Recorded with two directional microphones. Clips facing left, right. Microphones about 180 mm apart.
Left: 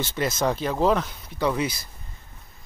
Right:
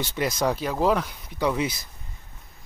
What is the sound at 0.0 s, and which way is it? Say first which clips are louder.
Speech: even; 15° right (ahead or behind).